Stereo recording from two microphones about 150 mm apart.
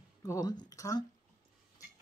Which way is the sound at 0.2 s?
25° left (ahead or behind).